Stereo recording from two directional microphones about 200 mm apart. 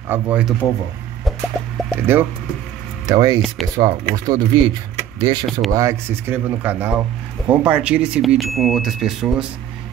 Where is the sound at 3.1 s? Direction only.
20° right (ahead or behind).